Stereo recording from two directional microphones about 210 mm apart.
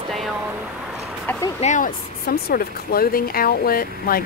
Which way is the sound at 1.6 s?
35° left (ahead or behind).